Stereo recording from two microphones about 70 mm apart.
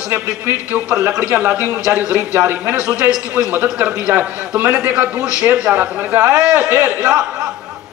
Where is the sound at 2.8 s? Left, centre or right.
Centre.